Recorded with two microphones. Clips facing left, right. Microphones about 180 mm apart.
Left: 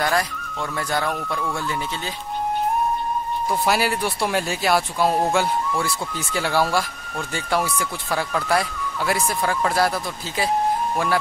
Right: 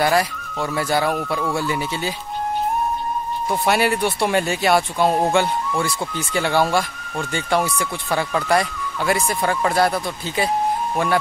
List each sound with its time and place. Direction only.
0.0 s speech: 5° right (ahead or behind)
3.4 s speech: centre (ahead or behind)